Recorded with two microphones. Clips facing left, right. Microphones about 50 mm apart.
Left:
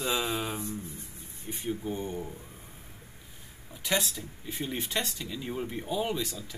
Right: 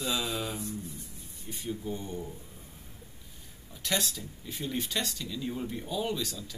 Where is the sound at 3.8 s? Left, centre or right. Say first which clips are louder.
Left 2 dB; centre.